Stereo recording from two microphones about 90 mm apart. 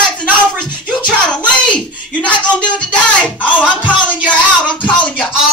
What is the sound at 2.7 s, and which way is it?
Music, 15° left (ahead or behind).